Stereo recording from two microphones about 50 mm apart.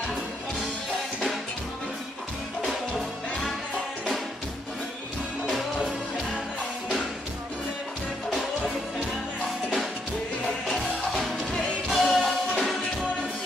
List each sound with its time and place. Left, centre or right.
5.5 s music: centre
8.3 s music: centre
11.9 s music: centre